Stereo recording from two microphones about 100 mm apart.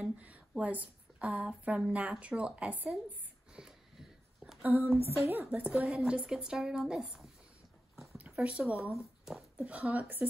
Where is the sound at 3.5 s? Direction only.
5° right (ahead or behind).